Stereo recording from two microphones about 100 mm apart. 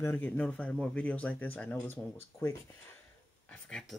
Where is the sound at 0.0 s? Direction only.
25° left (ahead or behind).